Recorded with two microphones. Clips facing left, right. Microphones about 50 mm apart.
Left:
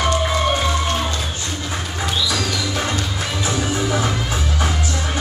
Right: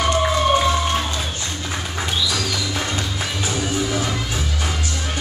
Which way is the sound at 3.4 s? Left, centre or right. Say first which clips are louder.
Left 2 dB; left.